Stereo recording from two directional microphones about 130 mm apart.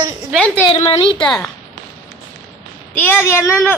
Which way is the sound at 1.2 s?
5° left (ahead or behind).